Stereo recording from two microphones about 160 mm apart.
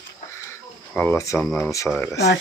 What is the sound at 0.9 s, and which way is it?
Speech, 15° left (ahead or behind).